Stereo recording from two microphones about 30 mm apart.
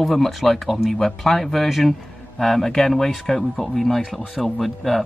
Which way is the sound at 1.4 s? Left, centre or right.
Centre.